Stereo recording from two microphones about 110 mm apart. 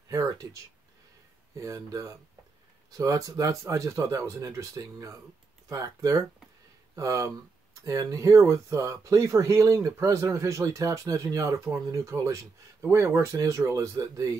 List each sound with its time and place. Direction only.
0.1 s speech: 30° right (ahead or behind)
1.6 s speech: 30° right (ahead or behind)